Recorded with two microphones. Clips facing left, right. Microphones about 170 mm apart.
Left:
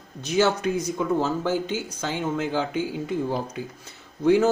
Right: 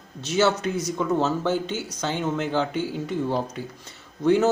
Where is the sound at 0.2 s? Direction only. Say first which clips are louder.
Even; 15° left (ahead or behind).